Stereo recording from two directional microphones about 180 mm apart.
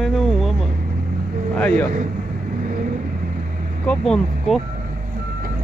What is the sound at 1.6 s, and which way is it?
Speech, 10° left (ahead or behind).